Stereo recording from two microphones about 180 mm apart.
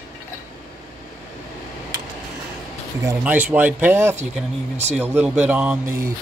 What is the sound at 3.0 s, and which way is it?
Speech, 10° right (ahead or behind).